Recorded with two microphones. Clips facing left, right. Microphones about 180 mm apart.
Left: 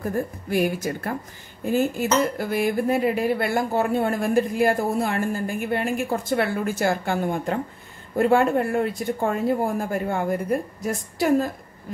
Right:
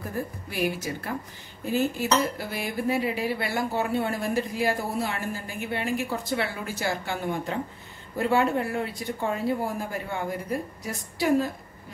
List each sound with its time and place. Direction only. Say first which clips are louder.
0.1 s cutlery: left 8 dB; 50° left (ahead or behind)